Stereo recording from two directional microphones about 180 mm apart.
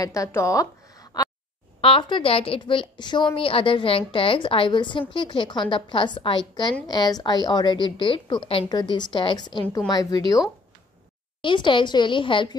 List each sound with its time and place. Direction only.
0.0 s a woman's voice: 20° left (ahead or behind)
11.4 s a woman's voice: 25° left (ahead or behind)